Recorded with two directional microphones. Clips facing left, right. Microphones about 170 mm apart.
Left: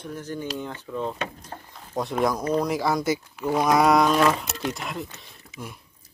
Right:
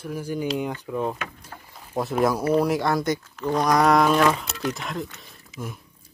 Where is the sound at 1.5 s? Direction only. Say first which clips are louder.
Left 4 dB; 40° left (ahead or behind).